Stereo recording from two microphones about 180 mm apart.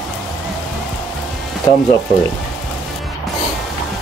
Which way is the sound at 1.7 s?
25° left (ahead or behind).